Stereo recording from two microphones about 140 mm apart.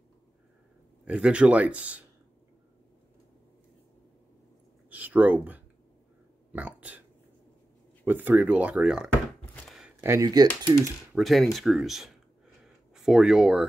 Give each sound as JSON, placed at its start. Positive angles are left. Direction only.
{"t": 1.0, "sound": "speech", "side_deg": -5}
{"t": 4.8, "sound": "speech", "side_deg": -10}
{"t": 9.7, "sound": "a sound", "side_deg": -5}
{"t": 10.0, "sound": "speech", "side_deg": -25}
{"t": 11.1, "sound": "speech", "side_deg": 0}